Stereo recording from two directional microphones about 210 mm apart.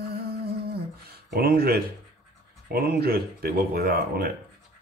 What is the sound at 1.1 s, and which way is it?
Speech, 45° right (ahead or behind).